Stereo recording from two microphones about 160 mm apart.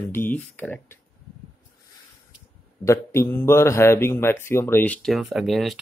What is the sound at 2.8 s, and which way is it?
Speech, 20° left (ahead or behind).